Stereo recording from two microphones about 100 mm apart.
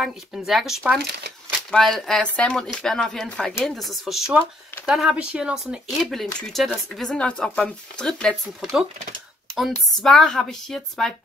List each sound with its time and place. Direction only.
0.0 s speech: 5° right (ahead or behind)